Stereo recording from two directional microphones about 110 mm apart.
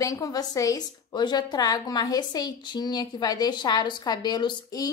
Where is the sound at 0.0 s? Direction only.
30° left (ahead or behind).